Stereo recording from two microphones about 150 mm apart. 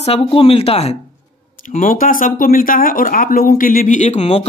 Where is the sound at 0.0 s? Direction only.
40° left (ahead or behind).